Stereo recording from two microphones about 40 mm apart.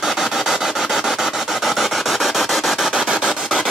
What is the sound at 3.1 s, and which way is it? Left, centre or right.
Rub, centre.